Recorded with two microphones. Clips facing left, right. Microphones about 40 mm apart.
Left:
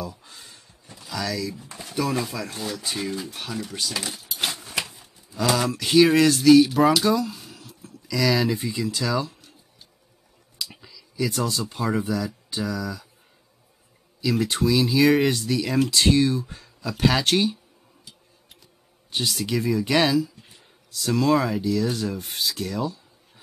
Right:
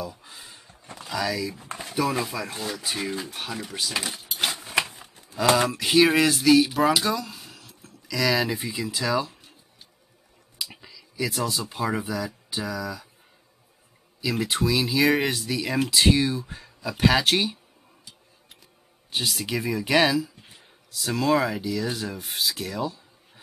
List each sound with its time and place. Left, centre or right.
0.0 s a sound: centre
1.1 s speech: centre
1.5 s speech: right
1.9 s speech: centre
4.4 s a sound: centre
5.6 s speech: centre
10.6 s speech: centre
14.2 s speech: centre
18.0 s a sound: centre
20.9 s speech: centre